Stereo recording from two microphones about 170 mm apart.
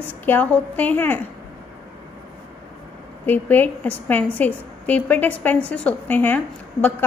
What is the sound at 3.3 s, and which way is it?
A woman's voice, 10° left (ahead or behind).